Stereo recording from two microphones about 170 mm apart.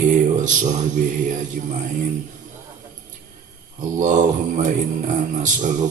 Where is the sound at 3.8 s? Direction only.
45° right (ahead or behind).